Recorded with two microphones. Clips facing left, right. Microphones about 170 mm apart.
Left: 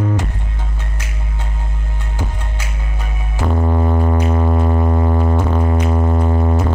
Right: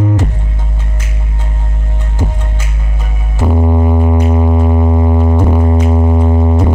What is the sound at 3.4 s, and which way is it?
Music, 15° right (ahead or behind).